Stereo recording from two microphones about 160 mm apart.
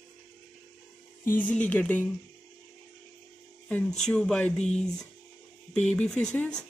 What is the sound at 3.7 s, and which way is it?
Speech, 5° left (ahead or behind).